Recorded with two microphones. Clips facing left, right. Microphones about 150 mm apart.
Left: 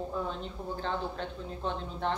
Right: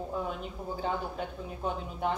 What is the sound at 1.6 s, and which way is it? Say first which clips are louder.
Speech: right 1 dB; 10° right (ahead or behind).